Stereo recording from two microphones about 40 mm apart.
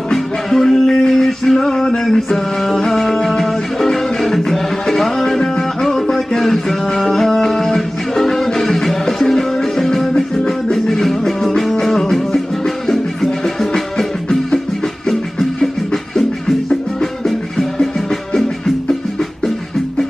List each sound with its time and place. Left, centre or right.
0.1 s music: centre
2.0 s a sound: centre
2.9 s music: centre
10.9 s music: centre
17.0 s music: centre